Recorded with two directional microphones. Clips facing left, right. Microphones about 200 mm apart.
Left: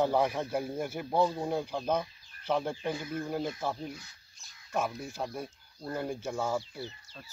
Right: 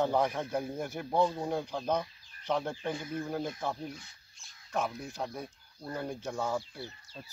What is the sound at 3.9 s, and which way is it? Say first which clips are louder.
Speech: left 1 dB; 40° left (ahead or behind).